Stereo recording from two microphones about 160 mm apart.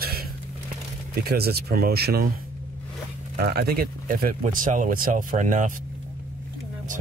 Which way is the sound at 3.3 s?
80° right.